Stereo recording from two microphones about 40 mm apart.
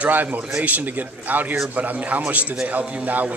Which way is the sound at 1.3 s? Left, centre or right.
Right.